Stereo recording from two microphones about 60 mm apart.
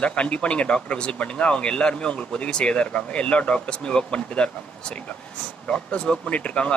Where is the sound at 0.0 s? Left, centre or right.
Centre.